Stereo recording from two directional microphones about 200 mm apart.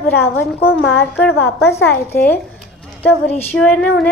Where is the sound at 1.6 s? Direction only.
10° left (ahead or behind).